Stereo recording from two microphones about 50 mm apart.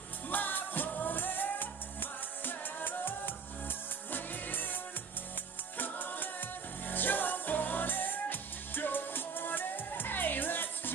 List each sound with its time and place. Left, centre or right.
0.3 s music: left
5.8 s music: left